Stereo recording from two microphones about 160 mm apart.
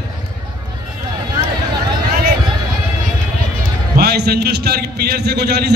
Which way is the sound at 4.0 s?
80° right.